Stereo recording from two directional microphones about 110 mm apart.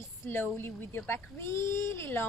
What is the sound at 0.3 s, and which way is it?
Speech, 20° left (ahead or behind).